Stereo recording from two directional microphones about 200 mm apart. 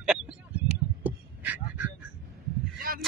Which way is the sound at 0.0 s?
5° right (ahead or behind).